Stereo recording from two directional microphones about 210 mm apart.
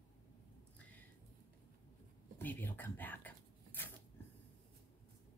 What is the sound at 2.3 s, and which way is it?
Speech, 10° left (ahead or behind).